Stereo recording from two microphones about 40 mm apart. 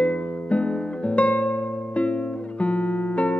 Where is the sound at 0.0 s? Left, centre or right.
Left.